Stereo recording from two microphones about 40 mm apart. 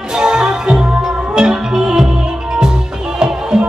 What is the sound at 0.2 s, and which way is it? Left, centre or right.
Music, centre.